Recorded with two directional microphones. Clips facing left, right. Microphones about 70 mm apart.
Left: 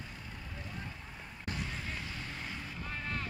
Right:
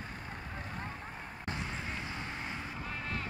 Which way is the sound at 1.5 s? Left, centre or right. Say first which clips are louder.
Right 1 dB; right.